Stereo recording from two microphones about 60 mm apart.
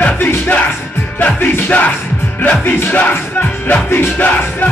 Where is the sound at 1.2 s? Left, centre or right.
Left.